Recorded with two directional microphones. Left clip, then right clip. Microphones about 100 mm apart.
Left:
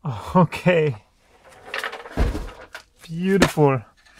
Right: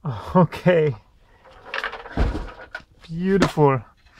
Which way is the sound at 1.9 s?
30° left (ahead or behind).